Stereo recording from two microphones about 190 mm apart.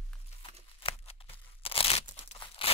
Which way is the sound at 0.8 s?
30° left (ahead or behind).